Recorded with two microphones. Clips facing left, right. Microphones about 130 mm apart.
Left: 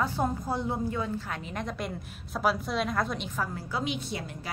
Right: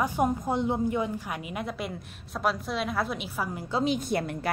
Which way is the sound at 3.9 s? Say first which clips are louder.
Right 7 dB; 50° right (ahead or behind).